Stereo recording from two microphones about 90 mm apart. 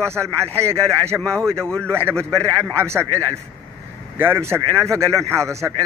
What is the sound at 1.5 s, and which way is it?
Speech, 10° left (ahead or behind).